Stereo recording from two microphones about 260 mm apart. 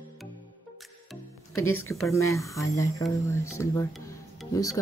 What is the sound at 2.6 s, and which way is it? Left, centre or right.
Speech, left.